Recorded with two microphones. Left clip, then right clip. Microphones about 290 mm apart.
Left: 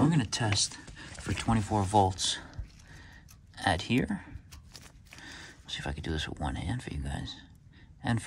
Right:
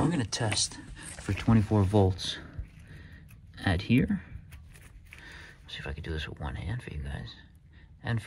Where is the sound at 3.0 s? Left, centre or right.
Left.